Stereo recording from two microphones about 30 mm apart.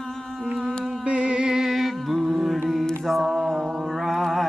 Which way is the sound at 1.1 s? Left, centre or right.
Right.